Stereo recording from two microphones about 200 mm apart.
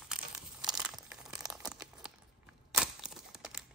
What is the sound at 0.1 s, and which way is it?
Crumpling, 5° right (ahead or behind).